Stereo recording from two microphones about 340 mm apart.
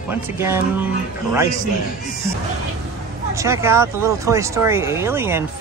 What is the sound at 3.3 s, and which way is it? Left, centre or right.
Speech, centre.